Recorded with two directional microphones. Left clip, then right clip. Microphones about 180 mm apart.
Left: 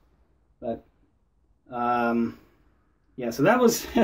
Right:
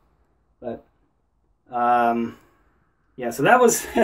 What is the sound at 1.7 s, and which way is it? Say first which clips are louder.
Speech: right 6 dB; 25° left (ahead or behind).